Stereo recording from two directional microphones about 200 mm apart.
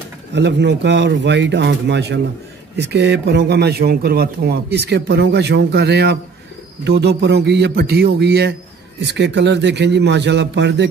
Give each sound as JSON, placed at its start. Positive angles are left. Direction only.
{"t": 0.3, "sound": "a man's voice", "side_deg": -60}